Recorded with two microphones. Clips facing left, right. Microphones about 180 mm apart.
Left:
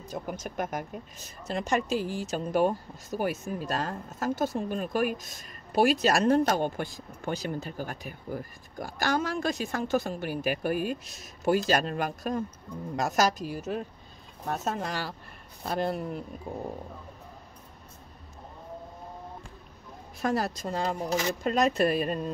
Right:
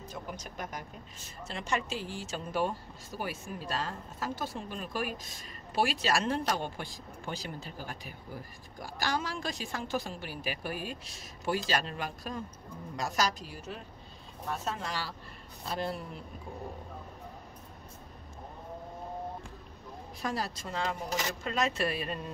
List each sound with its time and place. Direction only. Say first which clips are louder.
0.1 s a woman's voice: left 8 dB; 50° left (ahead or behind)
20.2 s a woman's voice: left 7 dB; 50° left (ahead or behind)